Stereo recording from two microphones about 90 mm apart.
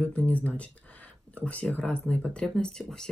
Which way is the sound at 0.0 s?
15° left (ahead or behind).